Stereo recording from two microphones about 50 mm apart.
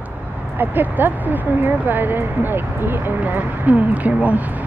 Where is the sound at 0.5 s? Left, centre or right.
Right.